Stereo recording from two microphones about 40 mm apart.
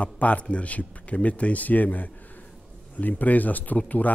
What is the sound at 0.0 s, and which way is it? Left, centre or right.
Speech, left.